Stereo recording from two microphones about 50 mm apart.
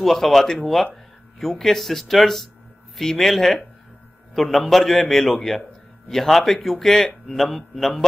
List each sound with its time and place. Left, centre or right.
0.0 s a man's voice: centre